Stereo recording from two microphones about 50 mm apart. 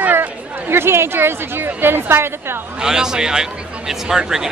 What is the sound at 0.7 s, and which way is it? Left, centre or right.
Speech, right.